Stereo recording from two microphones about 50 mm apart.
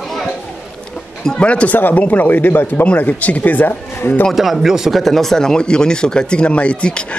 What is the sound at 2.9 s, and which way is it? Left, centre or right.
Speech, left.